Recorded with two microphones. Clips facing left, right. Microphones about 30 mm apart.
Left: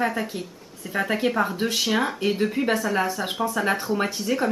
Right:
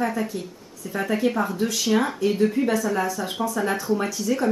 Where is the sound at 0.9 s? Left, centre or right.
Left.